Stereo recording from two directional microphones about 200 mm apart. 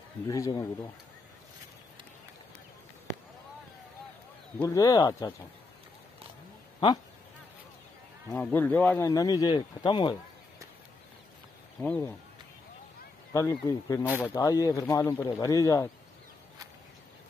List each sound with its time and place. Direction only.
0.3 s speech: 15° left (ahead or behind)
4.6 s speech: 20° left (ahead or behind)
8.3 s speech: 10° left (ahead or behind)
11.8 s speech: 10° left (ahead or behind)
13.3 s speech: 15° left (ahead or behind)